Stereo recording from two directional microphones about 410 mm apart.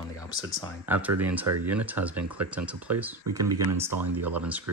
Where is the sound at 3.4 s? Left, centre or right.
Right.